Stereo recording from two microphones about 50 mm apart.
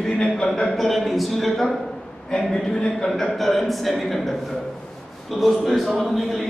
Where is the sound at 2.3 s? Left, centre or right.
Centre.